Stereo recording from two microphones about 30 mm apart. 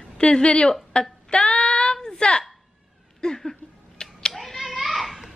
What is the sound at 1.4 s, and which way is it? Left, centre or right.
Female singing, left.